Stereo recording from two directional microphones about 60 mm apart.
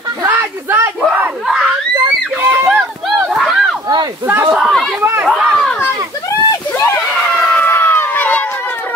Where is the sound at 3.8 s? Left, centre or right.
Right.